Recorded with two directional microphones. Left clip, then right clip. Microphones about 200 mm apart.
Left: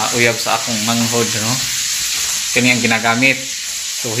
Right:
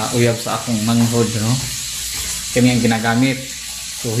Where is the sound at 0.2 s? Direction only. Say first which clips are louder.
Left 4 dB; centre (ahead or behind).